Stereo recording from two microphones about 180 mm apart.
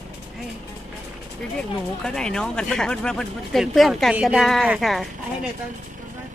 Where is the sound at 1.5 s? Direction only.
5° left (ahead or behind).